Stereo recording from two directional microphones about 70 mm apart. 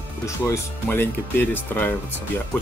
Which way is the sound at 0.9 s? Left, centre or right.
Left.